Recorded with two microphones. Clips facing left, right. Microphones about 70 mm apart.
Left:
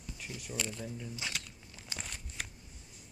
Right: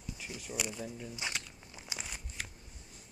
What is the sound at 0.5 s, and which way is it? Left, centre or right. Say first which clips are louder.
Speech: even; centre.